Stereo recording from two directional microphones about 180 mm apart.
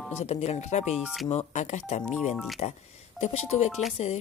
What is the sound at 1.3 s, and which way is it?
Speech, 40° left (ahead or behind).